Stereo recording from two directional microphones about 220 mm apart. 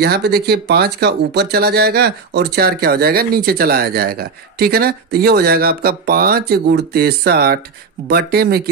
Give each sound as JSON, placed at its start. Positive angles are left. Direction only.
{"t": 0.0, "sound": "speech", "side_deg": -45}